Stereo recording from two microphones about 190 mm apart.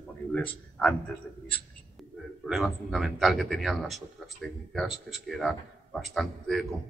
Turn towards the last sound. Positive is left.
turn(degrees=0)  # may be behind; listen again after turning